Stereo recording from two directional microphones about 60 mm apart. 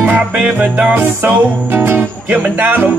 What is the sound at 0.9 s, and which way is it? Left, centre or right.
Music, right.